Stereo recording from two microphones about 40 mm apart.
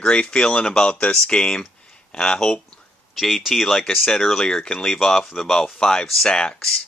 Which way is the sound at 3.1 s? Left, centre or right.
Centre.